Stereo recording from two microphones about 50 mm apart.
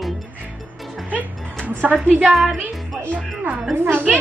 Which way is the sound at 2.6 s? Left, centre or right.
Right.